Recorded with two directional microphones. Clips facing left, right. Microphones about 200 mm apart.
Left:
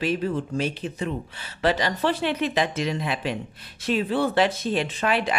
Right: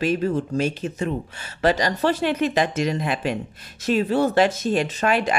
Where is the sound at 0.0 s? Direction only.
45° right (ahead or behind).